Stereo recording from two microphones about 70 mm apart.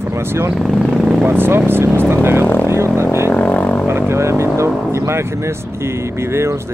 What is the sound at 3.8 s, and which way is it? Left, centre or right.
Speech, right.